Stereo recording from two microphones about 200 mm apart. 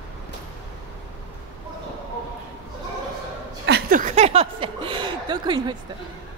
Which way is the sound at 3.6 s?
55° right (ahead or behind).